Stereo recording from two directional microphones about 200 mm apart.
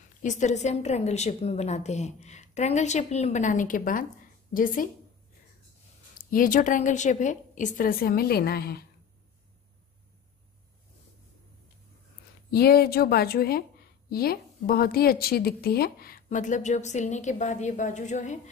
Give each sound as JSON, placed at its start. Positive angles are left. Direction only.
{"t": 0.2, "sound": "a woman's voice", "side_deg": 35}
{"t": 6.3, "sound": "a woman's voice", "side_deg": 45}
{"t": 12.4, "sound": "a woman's voice", "side_deg": 50}